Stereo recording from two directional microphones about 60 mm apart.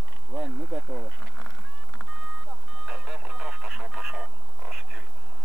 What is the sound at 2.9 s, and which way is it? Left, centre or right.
Radio, centre.